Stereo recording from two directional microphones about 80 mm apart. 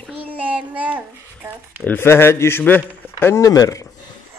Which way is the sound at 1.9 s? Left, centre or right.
Left.